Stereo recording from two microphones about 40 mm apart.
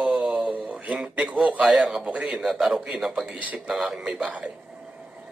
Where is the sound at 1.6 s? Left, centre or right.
Centre.